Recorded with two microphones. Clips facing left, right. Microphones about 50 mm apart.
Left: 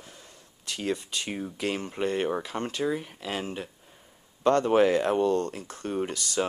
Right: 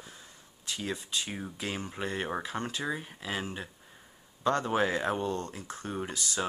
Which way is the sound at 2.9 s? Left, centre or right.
Left.